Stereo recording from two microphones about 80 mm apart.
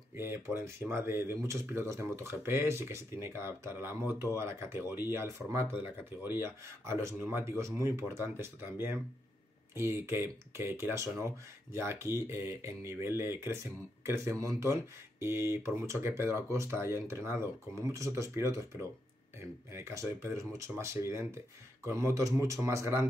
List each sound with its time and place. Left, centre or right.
0.1 s speech: right